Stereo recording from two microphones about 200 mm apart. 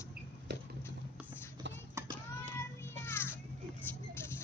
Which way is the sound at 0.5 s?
60° right (ahead or behind).